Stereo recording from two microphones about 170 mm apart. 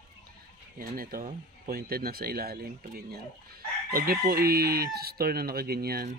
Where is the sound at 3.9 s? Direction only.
60° right (ahead or behind).